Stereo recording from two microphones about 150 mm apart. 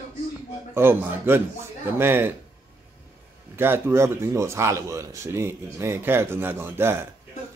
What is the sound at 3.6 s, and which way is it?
Speech, 15° right (ahead or behind).